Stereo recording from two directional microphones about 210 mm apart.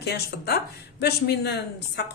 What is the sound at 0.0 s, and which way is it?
A woman's voice, 50° left (ahead or behind).